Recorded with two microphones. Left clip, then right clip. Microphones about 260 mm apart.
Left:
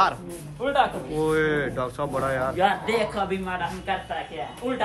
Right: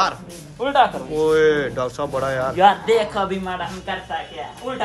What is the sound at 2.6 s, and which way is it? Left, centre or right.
Speech, centre.